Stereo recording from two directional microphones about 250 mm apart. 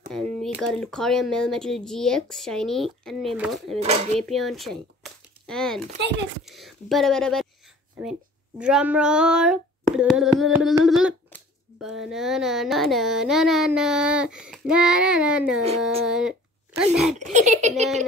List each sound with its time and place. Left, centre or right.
0.1 s a child's voice: centre
3.8 s a child's voice: right
4.2 s a child's voice: centre
15.8 s a sound: centre
16.9 s a child's voice: centre
17.2 s a child's voice: right